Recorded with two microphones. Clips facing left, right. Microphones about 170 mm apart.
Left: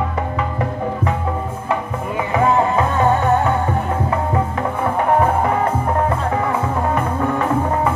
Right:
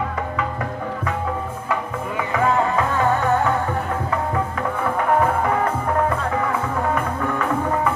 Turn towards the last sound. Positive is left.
turn(degrees=30)  # may be behind; listen again after turning